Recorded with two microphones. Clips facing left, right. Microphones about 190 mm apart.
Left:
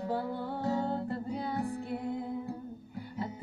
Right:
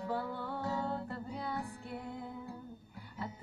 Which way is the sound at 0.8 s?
20° left (ahead or behind).